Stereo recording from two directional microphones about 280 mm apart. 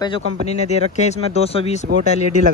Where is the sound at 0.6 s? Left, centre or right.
Left.